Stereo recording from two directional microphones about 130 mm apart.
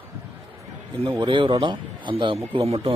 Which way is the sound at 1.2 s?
40° right (ahead or behind).